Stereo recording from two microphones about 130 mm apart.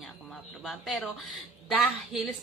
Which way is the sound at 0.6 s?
5° left (ahead or behind).